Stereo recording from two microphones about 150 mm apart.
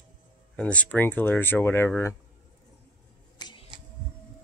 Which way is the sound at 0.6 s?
10° left (ahead or behind).